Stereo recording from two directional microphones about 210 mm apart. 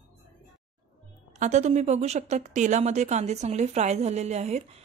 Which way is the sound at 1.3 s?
35° right (ahead or behind).